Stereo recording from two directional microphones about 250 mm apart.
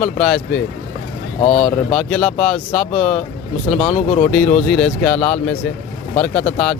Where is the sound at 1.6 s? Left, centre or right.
Centre.